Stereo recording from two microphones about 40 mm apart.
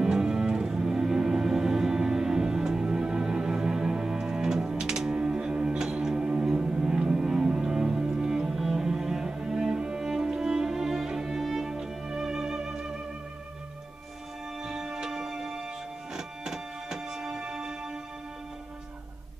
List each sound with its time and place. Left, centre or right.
0.0 s music: centre
14.6 s music: centre